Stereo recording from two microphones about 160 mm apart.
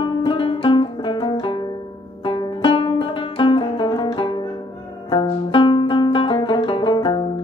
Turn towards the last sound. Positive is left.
turn(degrees=30)  # may be behind; listen again after turning